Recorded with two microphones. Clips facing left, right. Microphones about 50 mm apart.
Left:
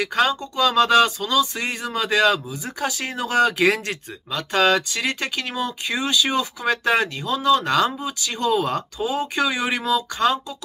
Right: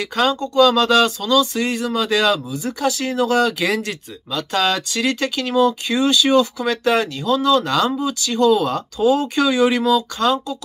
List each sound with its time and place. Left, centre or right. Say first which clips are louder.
0.0 s speech: right 2 dB; left